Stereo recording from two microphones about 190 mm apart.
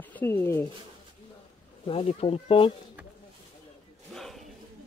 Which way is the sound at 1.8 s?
30° left (ahead or behind).